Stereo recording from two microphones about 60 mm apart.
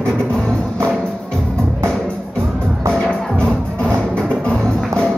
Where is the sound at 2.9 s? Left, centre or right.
Centre.